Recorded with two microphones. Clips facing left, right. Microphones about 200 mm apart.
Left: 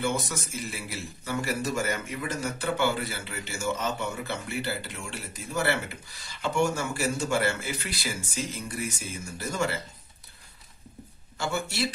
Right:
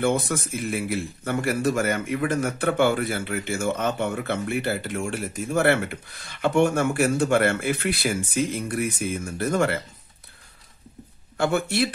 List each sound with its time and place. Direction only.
0.0 s a man's voice: 55° right (ahead or behind)
11.3 s a man's voice: 60° right (ahead or behind)